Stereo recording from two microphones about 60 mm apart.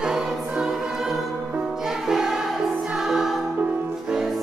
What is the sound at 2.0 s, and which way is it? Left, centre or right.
Music, centre.